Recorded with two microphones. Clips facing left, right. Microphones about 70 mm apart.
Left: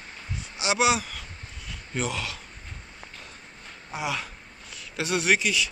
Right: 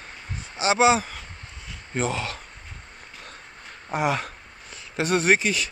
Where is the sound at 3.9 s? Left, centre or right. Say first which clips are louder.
Right 7 dB; right.